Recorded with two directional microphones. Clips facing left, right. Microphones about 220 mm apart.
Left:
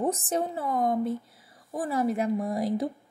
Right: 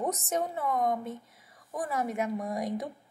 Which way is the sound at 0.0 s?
30° left (ahead or behind).